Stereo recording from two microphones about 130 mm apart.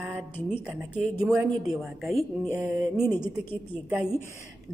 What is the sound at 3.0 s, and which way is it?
Speech, 20° left (ahead or behind).